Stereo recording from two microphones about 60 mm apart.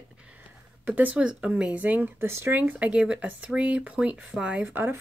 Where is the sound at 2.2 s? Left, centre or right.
Right.